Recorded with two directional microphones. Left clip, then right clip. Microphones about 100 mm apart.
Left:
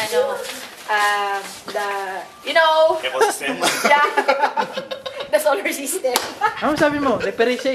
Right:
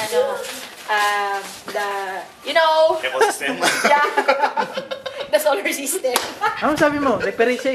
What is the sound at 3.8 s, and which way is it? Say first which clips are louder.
A woman's voice: left 1 dB; 15° right (ahead or behind).